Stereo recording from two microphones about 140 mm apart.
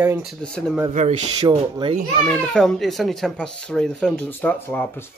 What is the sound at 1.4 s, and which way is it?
Speech, 30° right (ahead or behind).